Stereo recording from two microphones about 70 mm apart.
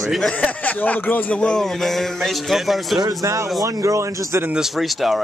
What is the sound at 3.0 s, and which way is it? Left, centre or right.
Speech, right.